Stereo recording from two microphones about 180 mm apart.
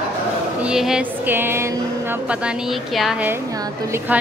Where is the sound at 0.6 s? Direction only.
5° right (ahead or behind).